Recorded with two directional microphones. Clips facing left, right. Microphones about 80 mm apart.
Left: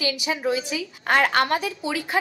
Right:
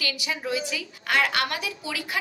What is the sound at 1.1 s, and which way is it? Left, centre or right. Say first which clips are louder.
A woman's voice: left 5 dB; left.